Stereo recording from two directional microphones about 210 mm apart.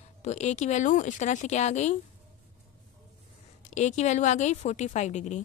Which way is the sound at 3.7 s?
35° left (ahead or behind).